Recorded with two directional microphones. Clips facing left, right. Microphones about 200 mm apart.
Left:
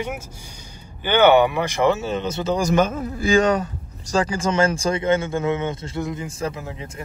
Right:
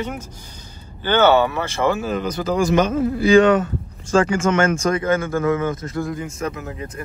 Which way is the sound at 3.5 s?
35° left (ahead or behind).